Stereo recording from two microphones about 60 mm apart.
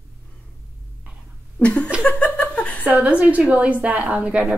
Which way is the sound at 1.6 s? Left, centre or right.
Left.